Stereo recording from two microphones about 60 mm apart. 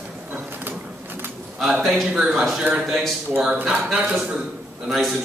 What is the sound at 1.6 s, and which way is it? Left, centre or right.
A man's voice, centre.